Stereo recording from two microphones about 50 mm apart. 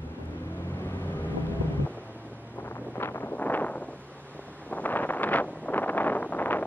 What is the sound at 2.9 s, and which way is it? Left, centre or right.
Wind noise, left.